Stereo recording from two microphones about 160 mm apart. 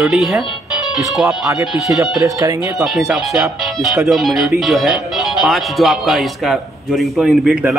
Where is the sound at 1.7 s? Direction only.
15° right (ahead or behind).